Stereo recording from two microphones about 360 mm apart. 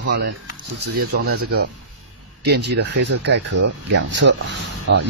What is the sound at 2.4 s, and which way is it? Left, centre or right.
Speech, right.